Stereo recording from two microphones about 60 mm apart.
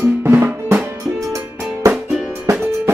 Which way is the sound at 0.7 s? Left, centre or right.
Right.